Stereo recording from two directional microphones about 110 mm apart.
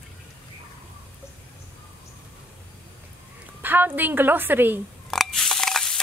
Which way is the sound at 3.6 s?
15° right (ahead or behind).